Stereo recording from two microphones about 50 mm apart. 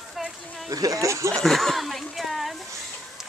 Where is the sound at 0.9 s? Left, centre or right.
Right.